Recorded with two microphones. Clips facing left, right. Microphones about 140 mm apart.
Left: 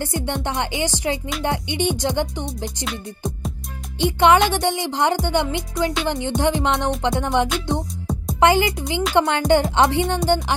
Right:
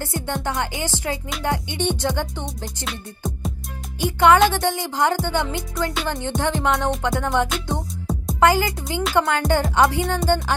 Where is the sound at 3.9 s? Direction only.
20° left (ahead or behind).